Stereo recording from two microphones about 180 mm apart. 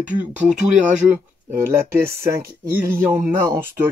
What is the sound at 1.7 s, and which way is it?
Speech, 15° right (ahead or behind).